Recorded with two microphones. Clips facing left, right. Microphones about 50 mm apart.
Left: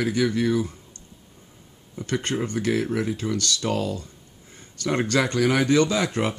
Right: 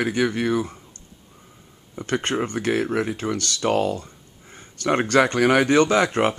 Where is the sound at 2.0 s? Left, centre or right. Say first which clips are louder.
Right 2 dB; right.